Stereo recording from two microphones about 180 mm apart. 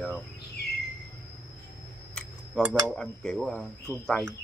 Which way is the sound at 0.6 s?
65° left (ahead or behind).